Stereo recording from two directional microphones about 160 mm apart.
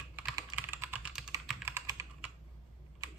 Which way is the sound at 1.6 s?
15° right (ahead or behind).